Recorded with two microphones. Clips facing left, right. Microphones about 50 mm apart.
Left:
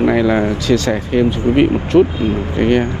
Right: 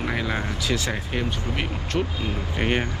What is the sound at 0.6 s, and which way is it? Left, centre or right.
Speech, centre.